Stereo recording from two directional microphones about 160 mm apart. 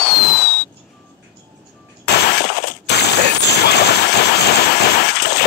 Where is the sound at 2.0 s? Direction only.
90° left.